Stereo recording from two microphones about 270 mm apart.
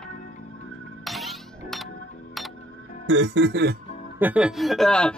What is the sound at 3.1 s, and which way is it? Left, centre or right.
Music, right.